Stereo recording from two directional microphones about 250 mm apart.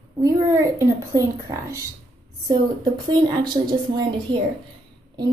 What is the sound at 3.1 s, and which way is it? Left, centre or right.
A woman's voice, centre.